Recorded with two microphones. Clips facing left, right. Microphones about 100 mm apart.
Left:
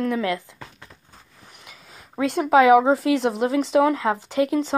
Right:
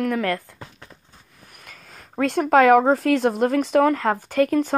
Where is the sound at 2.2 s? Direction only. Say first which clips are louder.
Even; 5° left (ahead or behind).